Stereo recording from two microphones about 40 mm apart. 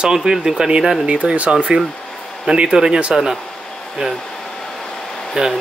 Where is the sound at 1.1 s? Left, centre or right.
Right.